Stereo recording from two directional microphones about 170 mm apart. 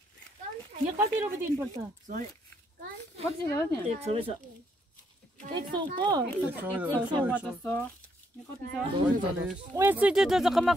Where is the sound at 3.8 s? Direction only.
35° right (ahead or behind).